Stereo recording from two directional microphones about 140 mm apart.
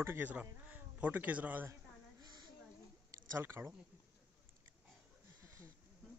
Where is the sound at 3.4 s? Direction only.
15° right (ahead or behind).